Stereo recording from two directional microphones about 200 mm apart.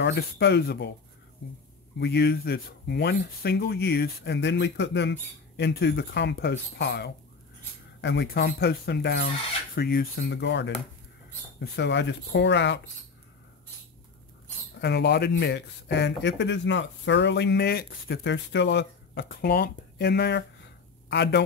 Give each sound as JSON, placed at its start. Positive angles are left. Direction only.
{"t": 0.0, "sound": "speech", "side_deg": 60}
{"t": 2.0, "sound": "speech", "side_deg": 55}
{"t": 14.8, "sound": "speech", "side_deg": 55}